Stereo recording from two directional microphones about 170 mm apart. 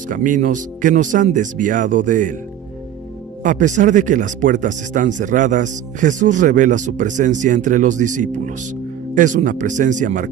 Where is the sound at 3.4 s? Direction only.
50° right (ahead or behind).